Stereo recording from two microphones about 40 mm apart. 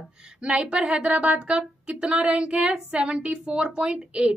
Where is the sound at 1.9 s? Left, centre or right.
Centre.